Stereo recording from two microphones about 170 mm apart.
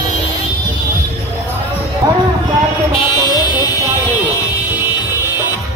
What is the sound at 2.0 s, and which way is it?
Speech, 25° right (ahead or behind).